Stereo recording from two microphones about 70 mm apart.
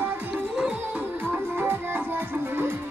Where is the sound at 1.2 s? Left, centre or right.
Right.